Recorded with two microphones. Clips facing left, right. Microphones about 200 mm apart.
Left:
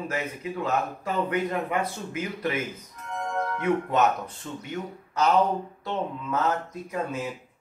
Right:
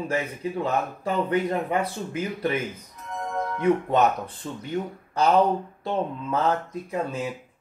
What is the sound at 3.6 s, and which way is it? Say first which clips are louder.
A man's voice: right 3 dB; 35° right (ahead or behind).